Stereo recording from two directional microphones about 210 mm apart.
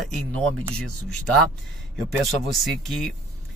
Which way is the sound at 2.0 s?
Centre (ahead or behind).